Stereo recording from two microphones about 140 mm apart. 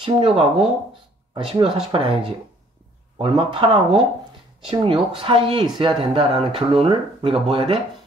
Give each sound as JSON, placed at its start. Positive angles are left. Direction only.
{"t": 0.0, "sound": "speech", "side_deg": -40}